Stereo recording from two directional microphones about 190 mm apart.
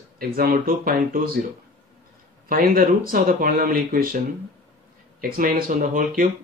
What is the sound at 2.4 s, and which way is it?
Speech, 50° right (ahead or behind).